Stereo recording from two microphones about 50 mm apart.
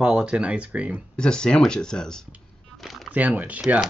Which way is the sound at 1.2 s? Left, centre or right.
Centre.